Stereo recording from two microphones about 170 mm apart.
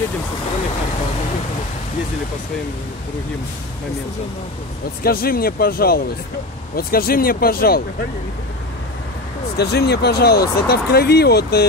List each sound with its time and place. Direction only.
5.0 s speech: 60° left (ahead or behind)
9.6 s speech: 75° left (ahead or behind)